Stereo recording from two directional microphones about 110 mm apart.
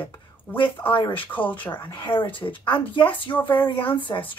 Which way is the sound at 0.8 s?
50° left (ahead or behind).